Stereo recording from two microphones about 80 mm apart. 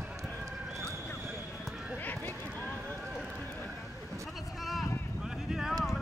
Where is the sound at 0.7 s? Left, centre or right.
Right.